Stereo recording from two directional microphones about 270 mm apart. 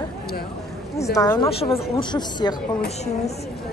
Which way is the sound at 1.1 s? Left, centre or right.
Centre.